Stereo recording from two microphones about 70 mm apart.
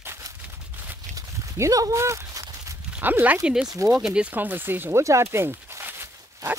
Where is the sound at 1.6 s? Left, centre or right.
Right.